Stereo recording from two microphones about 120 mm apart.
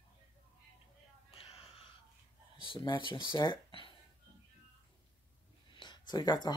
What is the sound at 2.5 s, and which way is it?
Speech, 45° left (ahead or behind).